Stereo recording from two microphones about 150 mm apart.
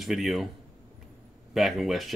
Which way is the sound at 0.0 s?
Centre (ahead or behind).